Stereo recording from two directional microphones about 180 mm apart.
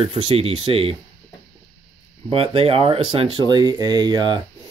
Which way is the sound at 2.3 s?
30° right (ahead or behind).